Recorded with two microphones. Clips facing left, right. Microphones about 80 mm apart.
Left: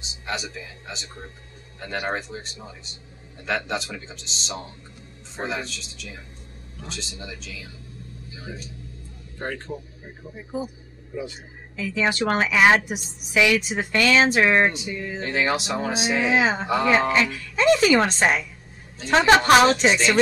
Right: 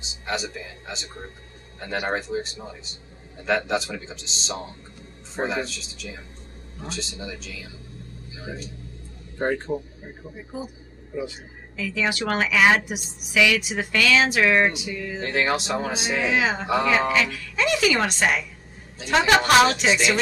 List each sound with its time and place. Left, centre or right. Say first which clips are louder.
0.0 s speech: right 2 dB; centre
8.5 s a man's voice: right 3 dB; centre
11.7 s a woman's voice: left 2 dB; left
15.1 s speech: even; centre
17.1 s a woman's voice: left 1 dB; left